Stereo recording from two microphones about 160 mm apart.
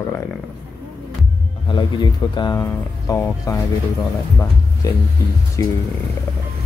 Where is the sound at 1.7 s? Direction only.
25° left (ahead or behind).